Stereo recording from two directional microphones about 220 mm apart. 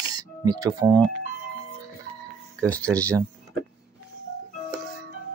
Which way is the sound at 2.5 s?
5° left (ahead or behind).